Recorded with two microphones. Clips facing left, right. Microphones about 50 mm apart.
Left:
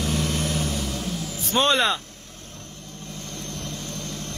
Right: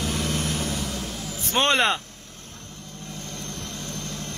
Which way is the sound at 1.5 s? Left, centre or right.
Right.